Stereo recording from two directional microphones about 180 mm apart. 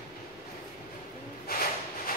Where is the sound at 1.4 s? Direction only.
55° left (ahead or behind).